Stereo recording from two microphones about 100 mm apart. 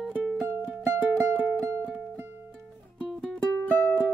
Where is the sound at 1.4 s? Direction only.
25° right (ahead or behind).